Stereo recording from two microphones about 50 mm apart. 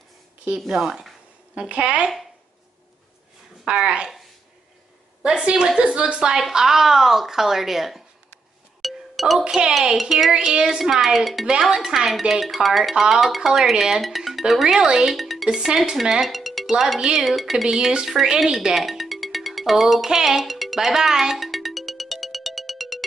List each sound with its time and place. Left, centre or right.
0.6 s a woman's voice: centre
1.5 s speech: right
3.8 s speech: centre
5.2 s a woman's voice: centre
8.8 s music: centre
9.9 s speech: centre
10.3 s a woman's voice: centre
15.5 s speech: centre